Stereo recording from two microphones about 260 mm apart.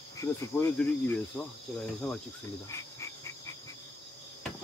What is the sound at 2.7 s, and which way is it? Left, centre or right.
Cricket, centre.